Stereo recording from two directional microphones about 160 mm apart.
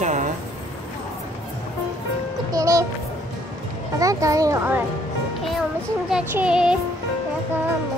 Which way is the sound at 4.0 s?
20° right (ahead or behind).